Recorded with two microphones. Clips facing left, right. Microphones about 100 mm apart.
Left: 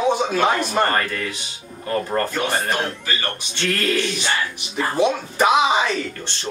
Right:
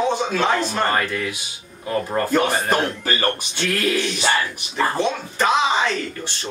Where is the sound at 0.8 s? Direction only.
10° right (ahead or behind).